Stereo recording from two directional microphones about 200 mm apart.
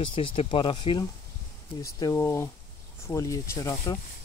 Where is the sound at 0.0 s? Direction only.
25° left (ahead or behind).